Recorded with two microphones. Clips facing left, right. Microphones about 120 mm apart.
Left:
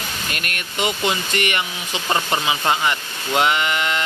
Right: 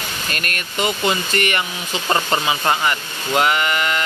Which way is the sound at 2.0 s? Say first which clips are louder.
Right 2 dB; 5° right (ahead or behind).